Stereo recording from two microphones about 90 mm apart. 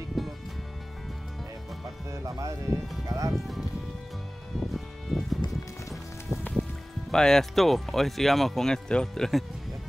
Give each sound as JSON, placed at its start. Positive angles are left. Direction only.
{"t": 0.2, "sound": "music", "side_deg": 0}
{"t": 2.0, "sound": "music", "side_deg": -40}
{"t": 3.3, "sound": "speech", "side_deg": 0}
{"t": 4.6, "sound": "music", "side_deg": 0}
{"t": 7.1, "sound": "speech", "side_deg": 5}